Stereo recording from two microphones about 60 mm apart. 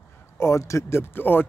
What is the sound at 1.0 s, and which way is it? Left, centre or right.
Speech, left.